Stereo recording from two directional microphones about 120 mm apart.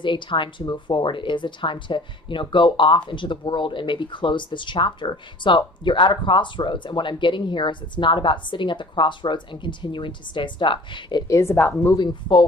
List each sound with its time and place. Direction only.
0.0 s speech: 40° left (ahead or behind)
11.2 s a woman's voice: 20° left (ahead or behind)
12.0 s speech: 40° left (ahead or behind)